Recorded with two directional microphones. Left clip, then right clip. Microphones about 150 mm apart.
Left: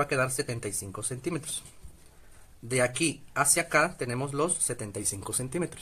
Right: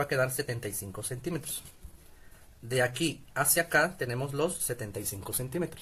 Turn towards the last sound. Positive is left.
turn(degrees=25)  # may be behind; listen again after turning